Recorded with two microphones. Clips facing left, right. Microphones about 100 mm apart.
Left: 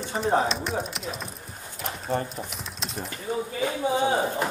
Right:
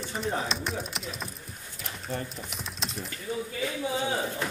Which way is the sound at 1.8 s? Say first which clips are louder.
Left 7 dB; 35° left (ahead or behind).